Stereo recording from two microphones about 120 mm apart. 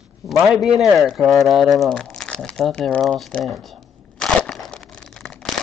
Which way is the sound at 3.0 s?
5° left (ahead or behind).